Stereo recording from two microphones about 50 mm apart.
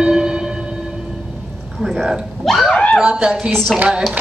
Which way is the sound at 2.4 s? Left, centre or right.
Centre.